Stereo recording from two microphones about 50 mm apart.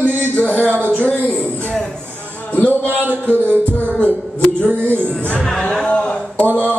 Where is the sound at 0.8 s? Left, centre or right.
Left.